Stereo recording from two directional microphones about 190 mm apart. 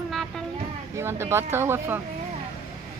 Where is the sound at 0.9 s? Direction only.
15° right (ahead or behind).